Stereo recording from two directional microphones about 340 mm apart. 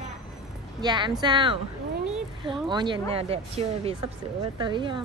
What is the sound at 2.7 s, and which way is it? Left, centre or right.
Speech, centre.